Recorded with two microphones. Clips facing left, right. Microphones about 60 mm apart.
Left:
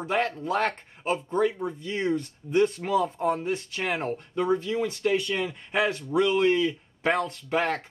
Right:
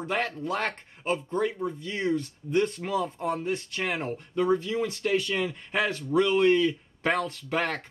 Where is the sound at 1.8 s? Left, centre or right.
Centre.